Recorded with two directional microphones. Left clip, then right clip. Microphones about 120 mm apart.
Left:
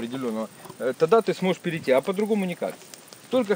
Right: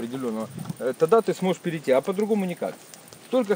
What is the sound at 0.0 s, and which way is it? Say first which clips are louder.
Speech: even; centre (ahead or behind).